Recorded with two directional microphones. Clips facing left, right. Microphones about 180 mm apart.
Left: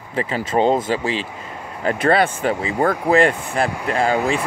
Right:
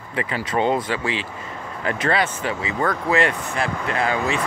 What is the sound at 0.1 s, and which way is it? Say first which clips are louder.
Speech: left 3 dB; 35° left (ahead or behind).